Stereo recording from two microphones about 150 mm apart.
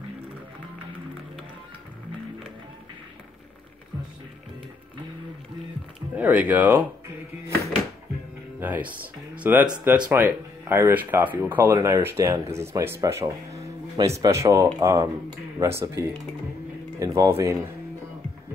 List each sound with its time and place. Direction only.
6.1 s speech: 10° right (ahead or behind)
8.5 s music: 10° right (ahead or behind)
9.4 s speech: 10° right (ahead or behind)